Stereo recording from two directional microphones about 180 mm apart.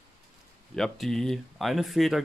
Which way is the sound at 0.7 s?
Centre (ahead or behind).